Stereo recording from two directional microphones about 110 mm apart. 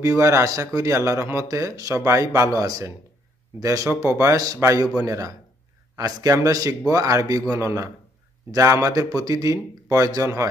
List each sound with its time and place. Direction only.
0.0 s a man's voice: 25° right (ahead or behind)